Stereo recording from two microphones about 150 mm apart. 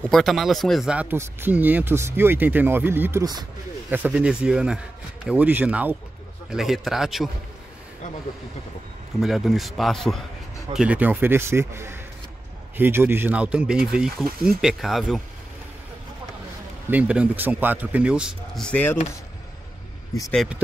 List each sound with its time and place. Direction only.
0.0 s speech: centre (ahead or behind); by 3.4 s 25° right (ahead or behind)
3.9 s a man's voice: 10° right (ahead or behind)
9.2 s a man's voice: centre (ahead or behind)
16.9 s speech: 10° right (ahead or behind); by 18.9 s 10° left (ahead or behind)